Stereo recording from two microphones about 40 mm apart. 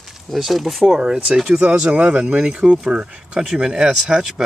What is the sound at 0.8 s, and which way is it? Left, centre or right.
Speech, centre.